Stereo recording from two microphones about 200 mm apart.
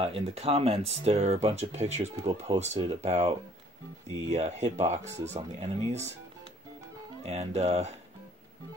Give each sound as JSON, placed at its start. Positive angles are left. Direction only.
{"t": 0.0, "sound": "speech", "side_deg": -30}
{"t": 7.2, "sound": "speech", "side_deg": -30}